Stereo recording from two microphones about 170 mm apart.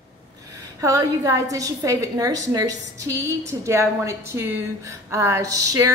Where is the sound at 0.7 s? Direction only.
20° right (ahead or behind).